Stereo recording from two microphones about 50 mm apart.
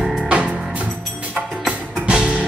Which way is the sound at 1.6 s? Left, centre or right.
Right.